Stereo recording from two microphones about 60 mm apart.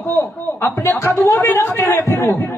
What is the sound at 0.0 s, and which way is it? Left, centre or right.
Speech, left.